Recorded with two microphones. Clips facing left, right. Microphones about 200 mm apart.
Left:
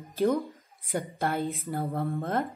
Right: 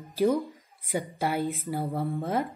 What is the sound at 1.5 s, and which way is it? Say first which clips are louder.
Speech: right 1 dB; centre (ahead or behind).